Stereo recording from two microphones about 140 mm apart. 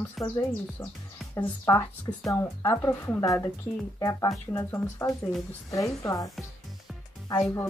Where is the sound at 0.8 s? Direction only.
20° left (ahead or behind).